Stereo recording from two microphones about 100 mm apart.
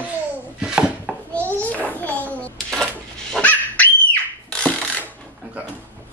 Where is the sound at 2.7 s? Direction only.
5° left (ahead or behind).